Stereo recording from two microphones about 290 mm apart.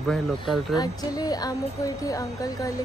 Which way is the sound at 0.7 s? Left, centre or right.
Centre.